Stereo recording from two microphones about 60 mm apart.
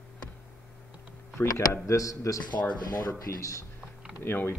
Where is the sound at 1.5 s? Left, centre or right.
Left.